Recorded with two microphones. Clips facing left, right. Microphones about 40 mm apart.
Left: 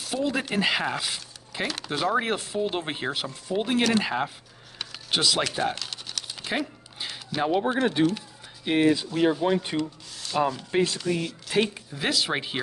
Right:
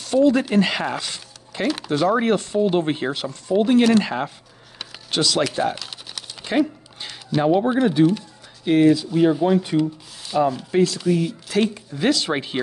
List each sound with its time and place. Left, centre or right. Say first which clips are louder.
0.0 s speech: right 10 dB; centre
5.4 s a sound: right 5 dB; centre
8.0 s speech: right 7 dB; left
8.6 s speech: right 6 dB; centre
9.8 s rub: right 8 dB; centre
11.0 s speech: right 7 dB; centre